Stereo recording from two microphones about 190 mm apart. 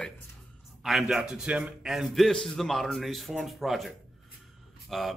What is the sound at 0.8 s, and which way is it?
A man's voice, centre (ahead or behind).